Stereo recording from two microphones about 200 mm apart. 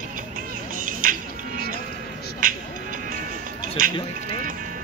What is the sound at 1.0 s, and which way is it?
Music, 45° right (ahead or behind).